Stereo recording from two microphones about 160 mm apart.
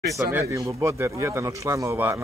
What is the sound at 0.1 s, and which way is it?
Speech, 15° right (ahead or behind).